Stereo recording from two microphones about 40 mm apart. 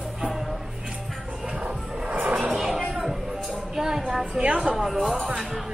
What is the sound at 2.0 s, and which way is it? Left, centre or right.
Music, right.